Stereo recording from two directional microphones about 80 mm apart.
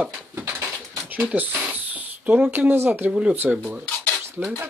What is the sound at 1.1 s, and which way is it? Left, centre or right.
Speech, centre.